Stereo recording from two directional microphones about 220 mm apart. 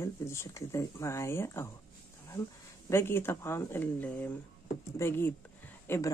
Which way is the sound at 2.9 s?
10° left (ahead or behind).